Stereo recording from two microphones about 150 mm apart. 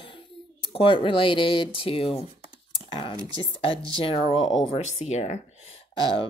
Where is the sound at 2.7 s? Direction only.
35° left (ahead or behind).